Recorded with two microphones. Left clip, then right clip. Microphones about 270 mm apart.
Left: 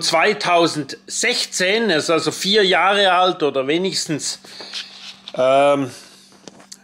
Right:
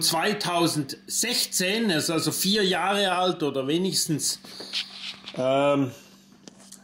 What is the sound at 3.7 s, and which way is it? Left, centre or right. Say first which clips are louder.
Speech: left 5 dB; centre.